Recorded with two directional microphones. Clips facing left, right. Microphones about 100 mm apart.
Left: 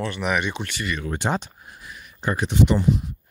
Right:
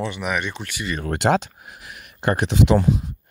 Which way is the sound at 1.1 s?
85° right.